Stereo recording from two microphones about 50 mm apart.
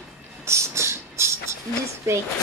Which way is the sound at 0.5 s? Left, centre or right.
Right.